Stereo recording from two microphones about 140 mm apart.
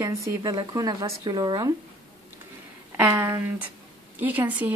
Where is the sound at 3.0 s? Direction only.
15° right (ahead or behind).